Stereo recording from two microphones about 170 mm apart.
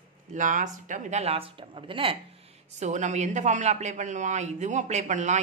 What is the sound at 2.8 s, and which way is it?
A woman's voice, 45° right (ahead or behind).